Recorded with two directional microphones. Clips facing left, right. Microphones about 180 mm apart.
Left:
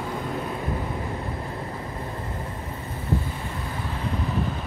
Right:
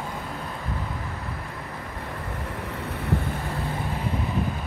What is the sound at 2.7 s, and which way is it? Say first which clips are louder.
Vehicle: right 1 dB; 75° right (ahead or behind).